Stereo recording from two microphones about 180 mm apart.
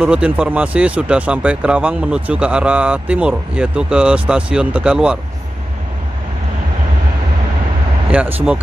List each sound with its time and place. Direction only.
0.0 s speech: 5° right (ahead or behind)
8.1 s speech: 10° right (ahead or behind)